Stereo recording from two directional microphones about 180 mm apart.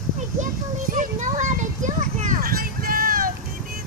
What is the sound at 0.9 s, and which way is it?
Children playing, 45° right (ahead or behind).